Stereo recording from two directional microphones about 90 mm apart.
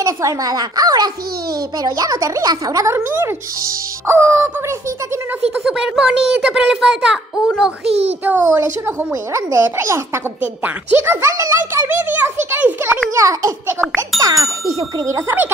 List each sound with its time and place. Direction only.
0.0 s a child's voice: 40° right (ahead or behind)
3.0 s a child's voice: 25° right (ahead or behind)
5.6 s a child's voice: 5° right (ahead or behind)
8.2 s a child's voice: 20° right (ahead or behind)
8.5 s speech: 30° right (ahead or behind)
10.4 s speech: 20° right (ahead or behind)
11.0 s a child's voice: 30° right (ahead or behind)
13.1 s speech: 40° right (ahead or behind)
13.7 s a child's voice: 25° right (ahead or behind)
14.2 s speech: 40° right (ahead or behind)